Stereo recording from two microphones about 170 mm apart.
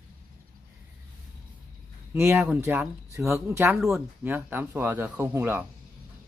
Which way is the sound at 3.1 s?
20° right (ahead or behind).